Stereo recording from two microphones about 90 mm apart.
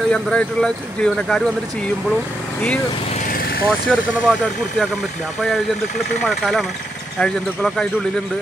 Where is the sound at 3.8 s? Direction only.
5° left (ahead or behind).